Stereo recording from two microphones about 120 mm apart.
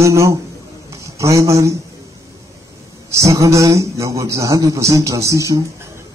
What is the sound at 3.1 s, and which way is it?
Speech, 25° right (ahead or behind).